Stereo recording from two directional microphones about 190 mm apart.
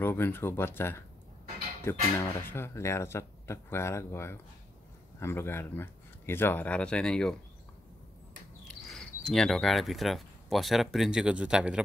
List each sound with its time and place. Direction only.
0.0 s speech: 10° left (ahead or behind)
2.1 s speech: 10° left (ahead or behind)
8.6 s speech: 5° left (ahead or behind)